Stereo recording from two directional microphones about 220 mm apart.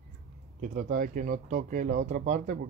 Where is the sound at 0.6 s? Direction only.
35° right (ahead or behind).